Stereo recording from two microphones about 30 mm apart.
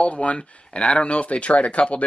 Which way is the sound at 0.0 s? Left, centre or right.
Left.